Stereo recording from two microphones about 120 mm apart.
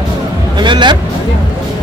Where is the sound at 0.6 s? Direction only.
40° right (ahead or behind).